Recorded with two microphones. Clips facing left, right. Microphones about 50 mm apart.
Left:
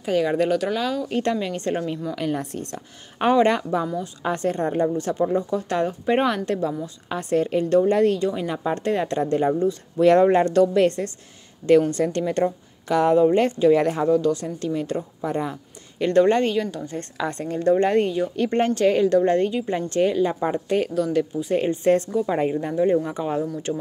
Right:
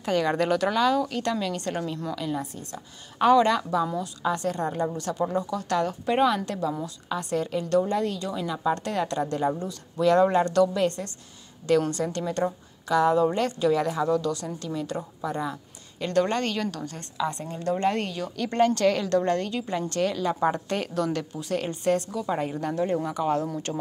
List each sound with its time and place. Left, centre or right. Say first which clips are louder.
0.0 s speech: left 3 dB; centre
1.1 s a woman's voice: left 4 dB; left
2.1 s a woman's voice: left 4 dB; left
3.2 s a woman's voice: left 1 dB; left
6.2 s a woman's voice: left 1 dB; left
14.0 s a woman's voice: left 6 dB; left
16.4 s speech: left 5 dB; centre
17.2 s a woman's voice: left 4 dB; left
20.3 s speech: left 3 dB; centre
21.5 s a woman's voice: left 6 dB; left
22.7 s speech: left 4 dB; centre